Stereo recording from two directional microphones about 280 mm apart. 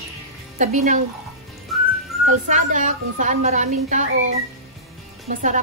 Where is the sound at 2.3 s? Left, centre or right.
Right.